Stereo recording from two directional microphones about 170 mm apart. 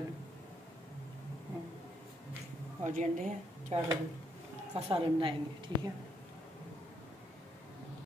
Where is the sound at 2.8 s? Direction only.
45° right (ahead or behind).